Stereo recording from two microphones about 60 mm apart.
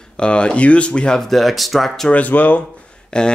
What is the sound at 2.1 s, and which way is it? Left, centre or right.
Speech, left.